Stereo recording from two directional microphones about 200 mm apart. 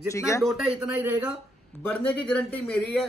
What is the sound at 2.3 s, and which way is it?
Speech, 5° left (ahead or behind).